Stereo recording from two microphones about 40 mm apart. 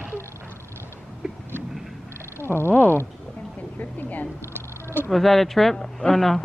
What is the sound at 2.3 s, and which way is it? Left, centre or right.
Cat, left.